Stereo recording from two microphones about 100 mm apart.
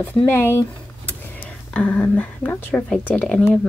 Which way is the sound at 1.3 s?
10° left (ahead or behind).